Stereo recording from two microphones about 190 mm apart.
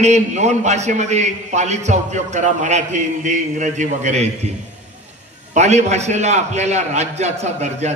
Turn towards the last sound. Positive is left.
turn(degrees=-35)  # may be behind; listen again after turning